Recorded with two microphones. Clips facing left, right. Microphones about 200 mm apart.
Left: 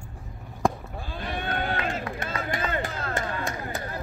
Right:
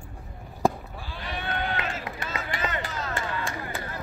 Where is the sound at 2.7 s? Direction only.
55° left (ahead or behind).